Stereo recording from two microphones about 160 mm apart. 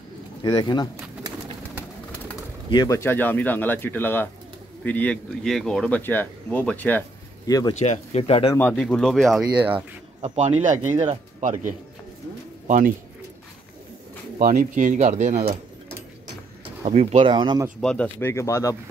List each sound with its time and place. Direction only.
0.4 s speech: 25° left (ahead or behind)
2.7 s speech: 25° left (ahead or behind)
3.0 s speech: 10° left (ahead or behind)
7.4 s speech: 20° left (ahead or behind)
7.8 s speech: 45° left (ahead or behind)
8.5 s speech: 10° left (ahead or behind)
10.3 s speech: 45° right (ahead or behind)
14.4 s speech: 55° right (ahead or behind)
16.8 s speech: 45° right (ahead or behind)
17.3 s speech: 30° right (ahead or behind)
17.7 s speech: 5° left (ahead or behind)